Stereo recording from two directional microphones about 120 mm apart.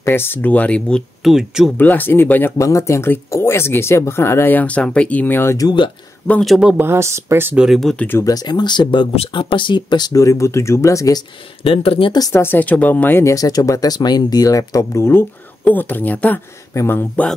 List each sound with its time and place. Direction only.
0.0 s speech: 20° left (ahead or behind)
1.2 s speech: centre (ahead or behind)
1.8 s speech: 15° left (ahead or behind)
6.4 s speech: centre (ahead or behind)
6.7 s speech: 20° right (ahead or behind)
7.6 s speech: centre (ahead or behind)
8.2 s speech: 30° left (ahead or behind)
9.1 s speech: 50° left (ahead or behind); by 11.1 s 25° left (ahead or behind)
11.6 s speech: 50° left (ahead or behind)
12.1 s speech: 30° left (ahead or behind)
12.4 s speech: 15° left (ahead or behind)